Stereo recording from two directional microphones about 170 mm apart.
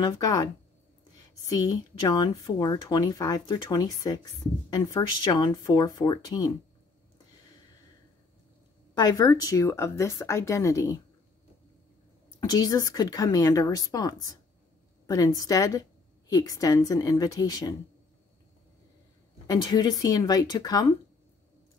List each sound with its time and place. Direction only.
0.0 s speech: 20° left (ahead or behind)
8.9 s speech: 25° left (ahead or behind)
12.4 s speech: 20° left (ahead or behind)
19.4 s speech: 20° left (ahead or behind)